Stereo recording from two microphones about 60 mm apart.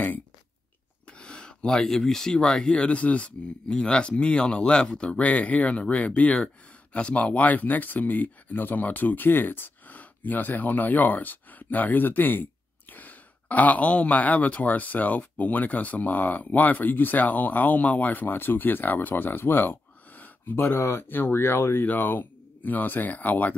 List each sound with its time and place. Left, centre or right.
1.0 s speech: centre; by 20.7 s left
20.7 s speech: left
21.1 s speech: left
21.8 s speech: left